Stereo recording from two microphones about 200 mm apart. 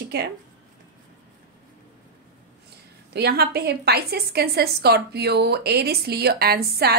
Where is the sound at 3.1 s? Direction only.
55° right (ahead or behind).